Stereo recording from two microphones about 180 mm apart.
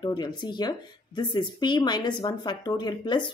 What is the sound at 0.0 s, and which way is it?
Speech, 25° left (ahead or behind).